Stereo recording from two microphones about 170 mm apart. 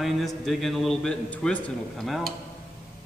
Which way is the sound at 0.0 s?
Centre (ahead or behind).